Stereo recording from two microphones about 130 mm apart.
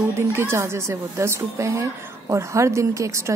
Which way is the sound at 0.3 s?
20° right (ahead or behind).